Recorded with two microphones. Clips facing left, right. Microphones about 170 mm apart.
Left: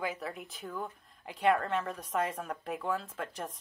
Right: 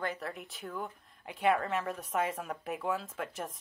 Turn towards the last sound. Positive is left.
turn(degrees=0)  # may be behind; listen again after turning